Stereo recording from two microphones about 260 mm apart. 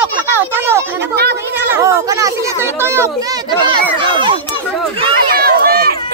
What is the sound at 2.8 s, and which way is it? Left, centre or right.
Speech, centre.